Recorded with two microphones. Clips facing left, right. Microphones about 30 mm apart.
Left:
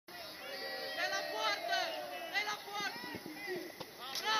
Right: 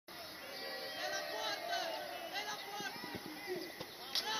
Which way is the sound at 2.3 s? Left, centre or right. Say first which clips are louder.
Left 9 dB; left.